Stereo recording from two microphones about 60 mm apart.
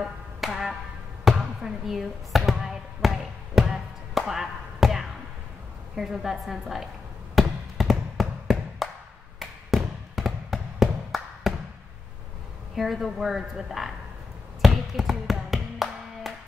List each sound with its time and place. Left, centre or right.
0.4 s music: centre
1.2 s speech: centre
3.5 s music: centre
5.9 s a woman's voice: centre
7.3 s a sound: centre
12.7 s a woman's voice: centre
14.6 s tap: centre